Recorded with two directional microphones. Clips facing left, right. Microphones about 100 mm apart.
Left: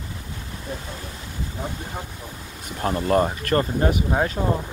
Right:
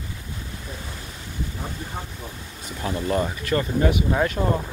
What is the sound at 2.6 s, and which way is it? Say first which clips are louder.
Speech: left 3 dB; 45° left (ahead or behind).